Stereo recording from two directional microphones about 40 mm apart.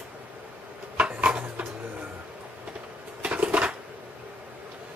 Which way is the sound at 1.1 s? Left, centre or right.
Right.